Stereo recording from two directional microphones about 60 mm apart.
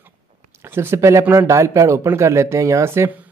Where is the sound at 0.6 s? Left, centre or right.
Right.